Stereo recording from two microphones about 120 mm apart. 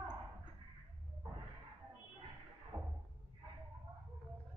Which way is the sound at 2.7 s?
25° right (ahead or behind).